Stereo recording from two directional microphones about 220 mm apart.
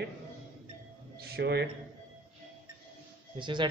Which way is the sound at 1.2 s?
45° right (ahead or behind).